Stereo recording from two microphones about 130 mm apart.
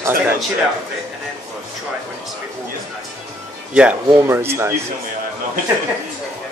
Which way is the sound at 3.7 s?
10° right (ahead or behind).